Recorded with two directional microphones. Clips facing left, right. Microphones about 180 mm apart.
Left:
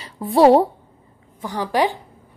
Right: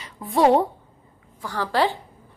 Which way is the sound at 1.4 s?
15° left (ahead or behind).